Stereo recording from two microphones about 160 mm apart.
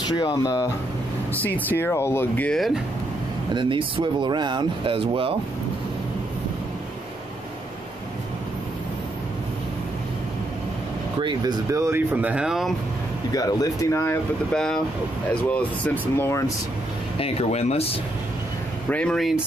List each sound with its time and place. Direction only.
0.0 s speech: 25° left (ahead or behind)
1.3 s speech: 10° left (ahead or behind)
3.5 s speech: 30° right (ahead or behind)
11.1 s speech: 25° right (ahead or behind); by 12.7 s 5° right (ahead or behind)
13.3 s speech: 20° left (ahead or behind)
14.5 s speech: 5° left (ahead or behind)
17.2 s speech: 40° left (ahead or behind)
18.9 s speech: 5° left (ahead or behind)